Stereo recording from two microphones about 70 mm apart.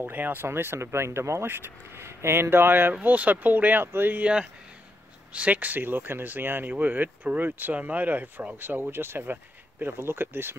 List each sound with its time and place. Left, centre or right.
0.0 s speech: right
5.3 s speech: right